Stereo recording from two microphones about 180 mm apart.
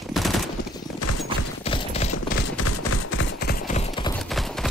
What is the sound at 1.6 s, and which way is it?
Clip-clop, 35° left (ahead or behind).